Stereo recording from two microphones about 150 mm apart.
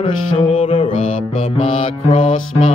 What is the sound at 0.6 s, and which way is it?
Mantra, 35° left (ahead or behind).